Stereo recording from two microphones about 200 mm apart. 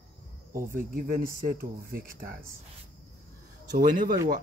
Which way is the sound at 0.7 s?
45° right (ahead or behind).